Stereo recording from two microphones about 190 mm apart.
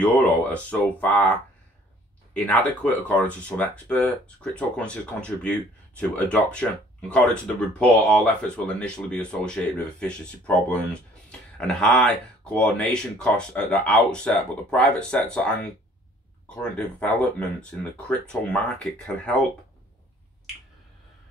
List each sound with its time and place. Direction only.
0.0 s speech: 10° left (ahead or behind)
2.3 s speech: 10° left (ahead or behind)
16.4 s speech: 5° left (ahead or behind)